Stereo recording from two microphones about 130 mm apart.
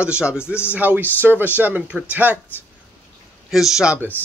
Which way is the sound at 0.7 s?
15° right (ahead or behind).